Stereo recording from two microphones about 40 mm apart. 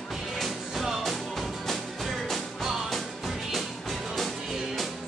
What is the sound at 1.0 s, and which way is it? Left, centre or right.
Music, centre.